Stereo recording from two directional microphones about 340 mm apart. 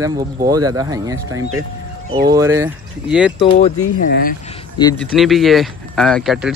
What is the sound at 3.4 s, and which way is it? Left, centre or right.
Speech, centre.